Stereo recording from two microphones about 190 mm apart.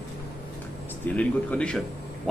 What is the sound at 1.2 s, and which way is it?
Speech, 5° left (ahead or behind).